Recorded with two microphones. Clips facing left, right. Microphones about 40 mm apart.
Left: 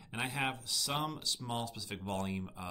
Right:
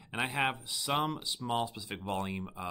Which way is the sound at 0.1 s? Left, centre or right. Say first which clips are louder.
Right 4 dB; right.